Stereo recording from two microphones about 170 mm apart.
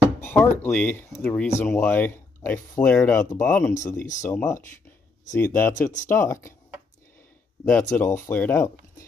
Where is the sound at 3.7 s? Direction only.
45° left (ahead or behind).